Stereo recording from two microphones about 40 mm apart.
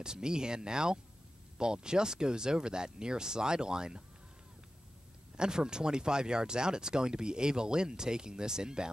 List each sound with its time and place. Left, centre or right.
0.0 s speech: centre
5.3 s speech: centre